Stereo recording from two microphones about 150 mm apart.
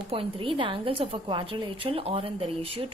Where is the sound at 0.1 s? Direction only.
35° right (ahead or behind).